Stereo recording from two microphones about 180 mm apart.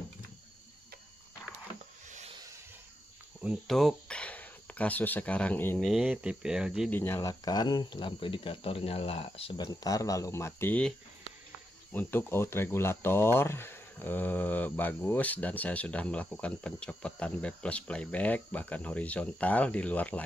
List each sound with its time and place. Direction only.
3.4 s speech: centre (ahead or behind)
5.9 s speech: 5° right (ahead or behind)
6.9 s speech: 10° left (ahead or behind)